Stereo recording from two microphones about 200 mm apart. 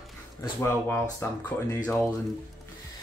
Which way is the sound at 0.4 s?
15° left (ahead or behind).